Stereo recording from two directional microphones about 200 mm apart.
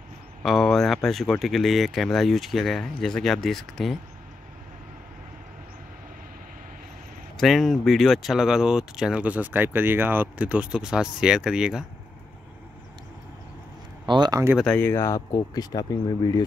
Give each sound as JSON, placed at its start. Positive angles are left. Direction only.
{"t": 0.4, "sound": "speech", "side_deg": 0}
{"t": 7.3, "sound": "speech", "side_deg": 0}
{"t": 14.0, "sound": "speech", "side_deg": -20}
{"t": 14.6, "sound": "speech", "side_deg": 10}